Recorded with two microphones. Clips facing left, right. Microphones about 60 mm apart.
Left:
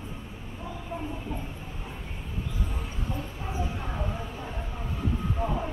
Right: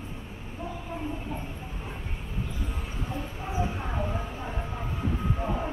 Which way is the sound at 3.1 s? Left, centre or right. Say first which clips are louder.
Right 4 dB; centre.